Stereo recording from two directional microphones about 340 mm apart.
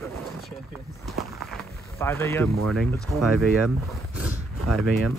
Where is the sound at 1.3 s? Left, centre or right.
Centre.